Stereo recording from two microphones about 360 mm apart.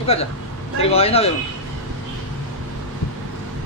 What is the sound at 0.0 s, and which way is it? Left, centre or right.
A man's voice, centre.